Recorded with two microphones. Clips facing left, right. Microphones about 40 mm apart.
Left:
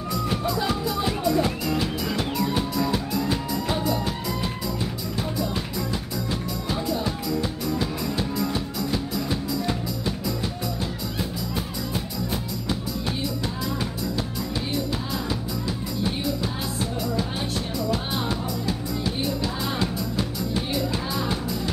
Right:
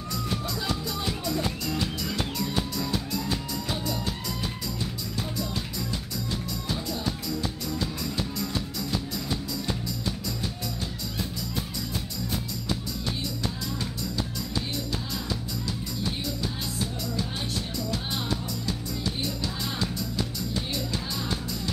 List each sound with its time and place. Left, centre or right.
0.3 s music: centre
6.7 s music: centre
19.2 s music: left